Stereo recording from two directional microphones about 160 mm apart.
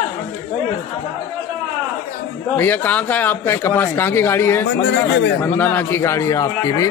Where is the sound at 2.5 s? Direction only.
10° left (ahead or behind).